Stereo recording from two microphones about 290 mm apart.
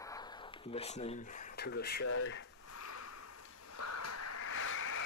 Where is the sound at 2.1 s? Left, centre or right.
Left.